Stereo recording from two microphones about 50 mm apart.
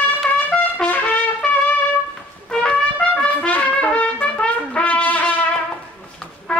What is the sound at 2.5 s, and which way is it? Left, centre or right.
Trumpet, centre.